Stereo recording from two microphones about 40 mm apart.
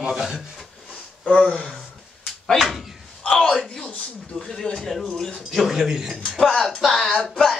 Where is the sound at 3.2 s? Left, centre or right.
Centre.